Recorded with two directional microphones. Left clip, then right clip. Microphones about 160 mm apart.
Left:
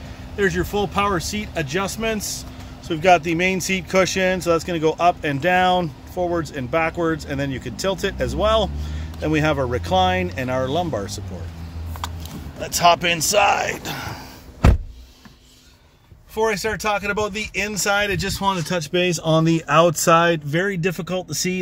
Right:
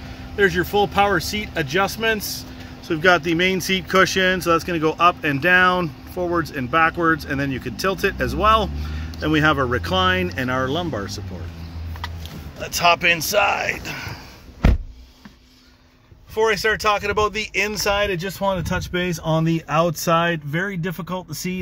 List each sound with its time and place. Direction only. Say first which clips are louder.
0.4 s speech: right 3 dB; centre (ahead or behind); by 11.2 s 15° left (ahead or behind)
12.5 s speech: left 1 dB; 30° left (ahead or behind)
16.3 s speech: right 3 dB; 5° left (ahead or behind)